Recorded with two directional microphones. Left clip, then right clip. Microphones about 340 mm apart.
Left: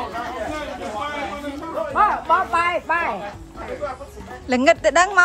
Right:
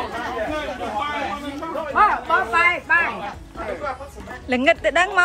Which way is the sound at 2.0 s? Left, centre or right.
Centre.